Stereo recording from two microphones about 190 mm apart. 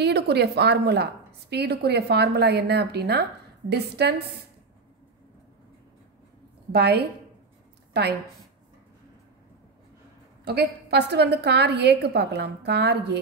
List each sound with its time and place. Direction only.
0.0 s a woman's voice: 60° right (ahead or behind)
6.7 s a woman's voice: 60° right (ahead or behind)
10.4 s a woman's voice: 60° right (ahead or behind)